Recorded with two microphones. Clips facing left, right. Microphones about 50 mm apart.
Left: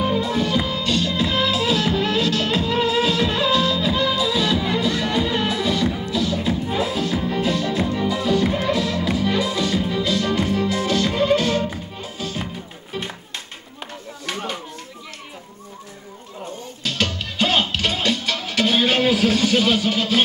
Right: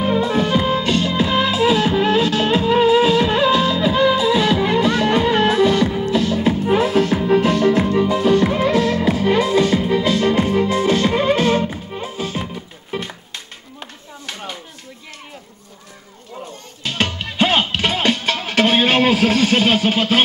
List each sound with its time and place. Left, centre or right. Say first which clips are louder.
0.0 s music: right 3 dB; right
16.8 s music: right 2 dB; right